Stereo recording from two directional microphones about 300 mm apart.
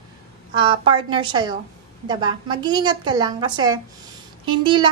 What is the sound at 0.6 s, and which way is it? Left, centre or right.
A woman's voice, centre.